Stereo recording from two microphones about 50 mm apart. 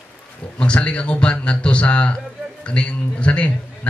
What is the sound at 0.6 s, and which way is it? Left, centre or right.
Speech, left.